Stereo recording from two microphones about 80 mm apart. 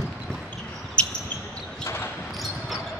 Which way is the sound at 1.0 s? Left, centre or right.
Centre.